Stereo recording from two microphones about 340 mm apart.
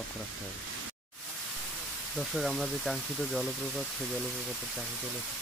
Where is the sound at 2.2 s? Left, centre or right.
Centre.